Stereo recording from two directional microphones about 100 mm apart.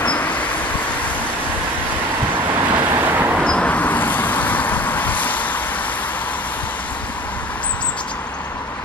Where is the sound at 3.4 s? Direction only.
10° left (ahead or behind).